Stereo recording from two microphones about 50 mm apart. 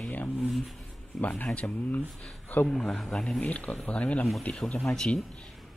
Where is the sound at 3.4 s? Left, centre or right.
Left.